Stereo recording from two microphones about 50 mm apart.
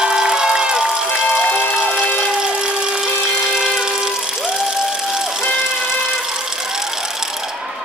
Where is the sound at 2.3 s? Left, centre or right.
Centre.